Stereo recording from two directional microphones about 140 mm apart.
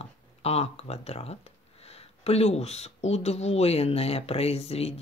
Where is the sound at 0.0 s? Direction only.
45° left (ahead or behind).